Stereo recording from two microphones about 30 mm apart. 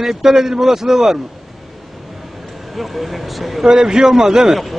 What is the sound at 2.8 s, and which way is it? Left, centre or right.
Speech, centre.